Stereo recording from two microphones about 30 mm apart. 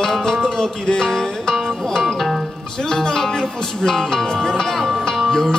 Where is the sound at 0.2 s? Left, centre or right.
Centre.